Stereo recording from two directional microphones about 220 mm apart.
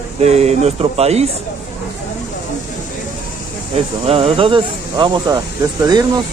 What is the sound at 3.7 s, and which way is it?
Speech, 25° right (ahead or behind).